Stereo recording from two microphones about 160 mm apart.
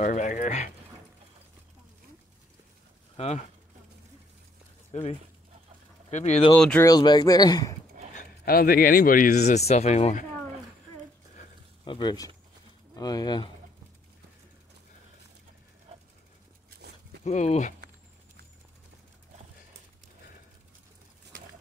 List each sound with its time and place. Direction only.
0.0 s speech: 50° left (ahead or behind)
3.2 s speech: 40° left (ahead or behind)
4.9 s speech: 50° left (ahead or behind)
6.8 s speech: 25° left (ahead or behind)
8.1 s speech: 60° left (ahead or behind)
11.8 s speech: 30° left (ahead or behind)
17.2 s speech: 45° left (ahead or behind)